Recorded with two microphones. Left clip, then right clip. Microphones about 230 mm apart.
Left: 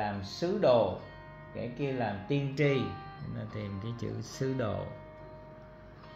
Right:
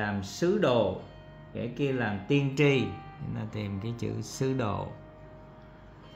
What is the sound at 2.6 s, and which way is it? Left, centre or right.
Music, right.